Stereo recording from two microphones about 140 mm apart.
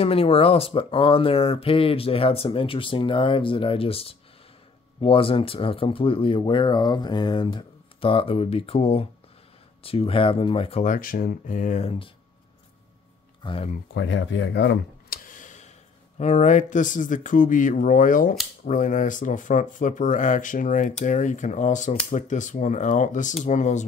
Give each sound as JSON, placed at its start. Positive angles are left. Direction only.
{"t": 0.0, "sound": "speech", "side_deg": 45}
{"t": 10.8, "sound": "speech", "side_deg": 75}
{"t": 11.8, "sound": "speech", "side_deg": 45}
{"t": 13.4, "sound": "speech", "side_deg": 35}
{"t": 15.0, "sound": "a sound", "side_deg": 70}
{"t": 16.2, "sound": "speech", "side_deg": 60}